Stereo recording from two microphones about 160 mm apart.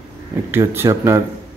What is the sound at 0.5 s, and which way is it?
Speech, 15° right (ahead or behind).